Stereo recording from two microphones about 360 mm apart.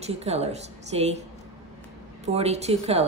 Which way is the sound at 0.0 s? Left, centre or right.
Centre.